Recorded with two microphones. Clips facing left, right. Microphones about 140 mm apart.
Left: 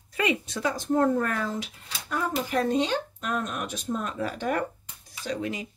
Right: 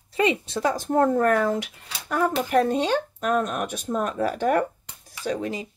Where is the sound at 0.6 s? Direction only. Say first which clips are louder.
Right 3 dB; 50° right (ahead or behind).